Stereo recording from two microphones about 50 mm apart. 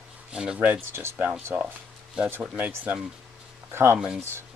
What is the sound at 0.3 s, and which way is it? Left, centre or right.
Speech, centre.